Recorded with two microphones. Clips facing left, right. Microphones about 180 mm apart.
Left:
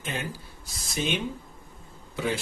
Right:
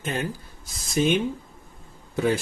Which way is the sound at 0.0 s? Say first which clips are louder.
Right 5 dB; 45° right (ahead or behind).